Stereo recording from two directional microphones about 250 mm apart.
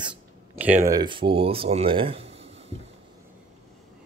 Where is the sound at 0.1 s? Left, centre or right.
Centre.